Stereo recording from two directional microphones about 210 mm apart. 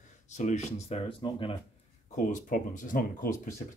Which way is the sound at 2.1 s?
40° left (ahead or behind).